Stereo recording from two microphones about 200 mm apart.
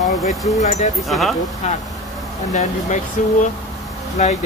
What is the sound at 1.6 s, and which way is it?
Speech, 35° left (ahead or behind).